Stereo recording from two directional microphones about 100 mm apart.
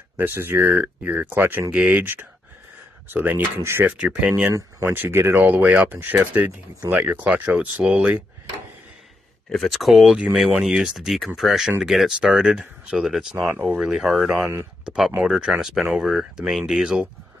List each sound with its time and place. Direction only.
0.2 s speech: 20° right (ahead or behind)
1.8 s speech: 10° right (ahead or behind)
3.1 s speech: 15° right (ahead or behind)
3.9 s speech: 10° right (ahead or behind)
4.6 s speech: 30° right (ahead or behind)
4.9 s speech: 20° right (ahead or behind)
9.5 s speech: centre (ahead or behind)